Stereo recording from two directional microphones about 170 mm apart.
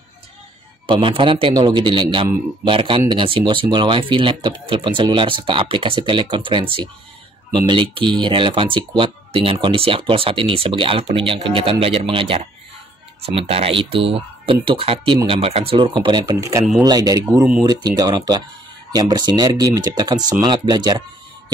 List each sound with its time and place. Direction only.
0.8 s speech: 30° right (ahead or behind)